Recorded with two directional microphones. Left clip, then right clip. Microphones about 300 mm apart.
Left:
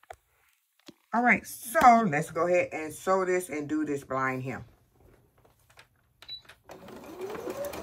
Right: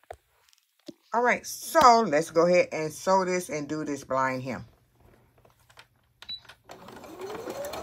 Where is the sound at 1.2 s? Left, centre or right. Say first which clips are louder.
Left 2 dB; centre.